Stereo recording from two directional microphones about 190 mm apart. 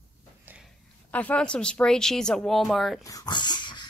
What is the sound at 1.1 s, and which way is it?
A woman's voice, 5° left (ahead or behind).